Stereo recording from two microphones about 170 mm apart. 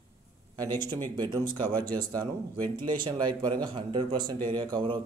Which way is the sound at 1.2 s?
25° right (ahead or behind).